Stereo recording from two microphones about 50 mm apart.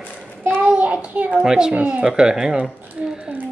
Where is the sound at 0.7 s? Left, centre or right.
Right.